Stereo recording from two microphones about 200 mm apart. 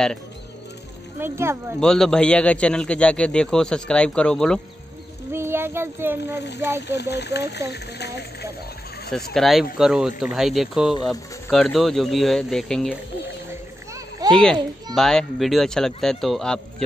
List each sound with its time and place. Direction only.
1.2 s a child's voice: 15° right (ahead or behind)
1.8 s a man's voice: centre (ahead or behind)
5.3 s a child's voice: 10° right (ahead or behind)
6.9 s speech: 55° left (ahead or behind)
9.3 s a man's voice: centre (ahead or behind)
14.3 s a man's voice: 5° left (ahead or behind)